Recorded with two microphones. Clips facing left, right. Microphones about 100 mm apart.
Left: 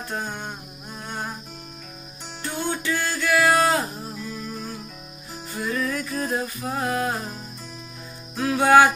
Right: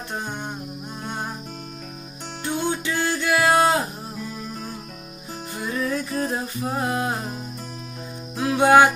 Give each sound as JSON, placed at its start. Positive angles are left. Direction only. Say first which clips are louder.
{"t": 0.1, "sound": "music", "louder": "even", "side_deg": -20}
{"t": 2.4, "sound": "music", "louder": "right 2 dB", "side_deg": -20}
{"t": 5.5, "sound": "music", "louder": "even", "side_deg": -25}
{"t": 8.4, "sound": "music", "louder": "right 1 dB", "side_deg": -20}